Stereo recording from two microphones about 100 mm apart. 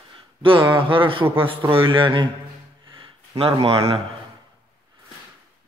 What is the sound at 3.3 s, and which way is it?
Speech, 70° right (ahead or behind).